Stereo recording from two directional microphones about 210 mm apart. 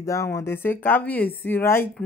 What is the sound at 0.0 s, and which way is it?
Speech, 15° left (ahead or behind).